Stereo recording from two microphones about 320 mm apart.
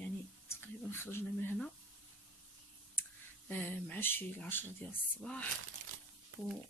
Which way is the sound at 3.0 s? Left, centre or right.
Centre.